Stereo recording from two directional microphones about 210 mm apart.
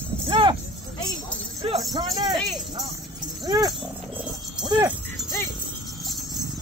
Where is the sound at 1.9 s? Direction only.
20° right (ahead or behind).